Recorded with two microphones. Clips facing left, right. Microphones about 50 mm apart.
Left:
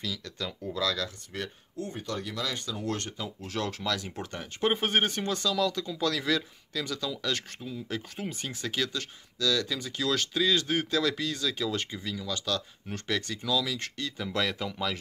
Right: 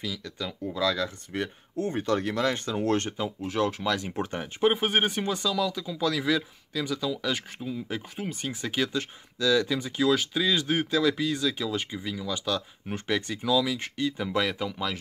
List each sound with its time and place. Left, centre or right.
0.0 s speech: centre
1.9 s speech: right
3.3 s speech: centre
4.6 s speech: centre